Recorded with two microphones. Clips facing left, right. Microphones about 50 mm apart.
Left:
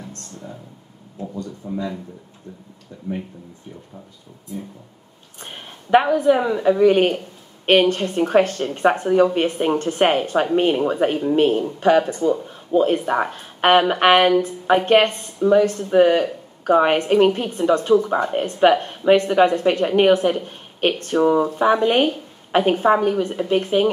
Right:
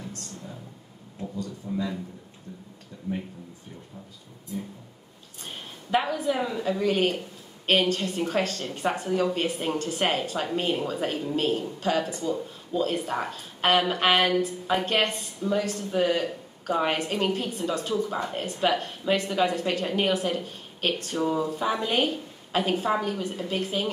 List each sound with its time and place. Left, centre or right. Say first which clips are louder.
1.2 s speech: left 4 dB; left
5.4 s a woman's voice: left 3 dB; left